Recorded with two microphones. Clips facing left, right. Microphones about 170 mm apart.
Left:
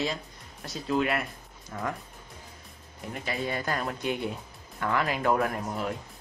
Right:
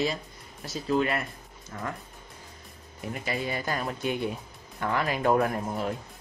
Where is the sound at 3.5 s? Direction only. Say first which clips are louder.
Even; 15° right (ahead or behind).